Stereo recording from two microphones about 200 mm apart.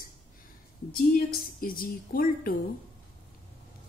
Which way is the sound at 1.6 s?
45° left (ahead or behind).